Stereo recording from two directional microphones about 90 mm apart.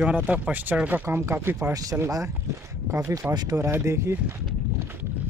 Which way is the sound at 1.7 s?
40° right (ahead or behind).